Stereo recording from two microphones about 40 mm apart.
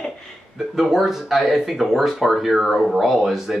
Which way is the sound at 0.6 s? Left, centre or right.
Centre.